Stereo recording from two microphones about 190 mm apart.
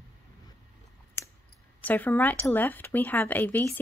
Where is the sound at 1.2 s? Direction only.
15° left (ahead or behind).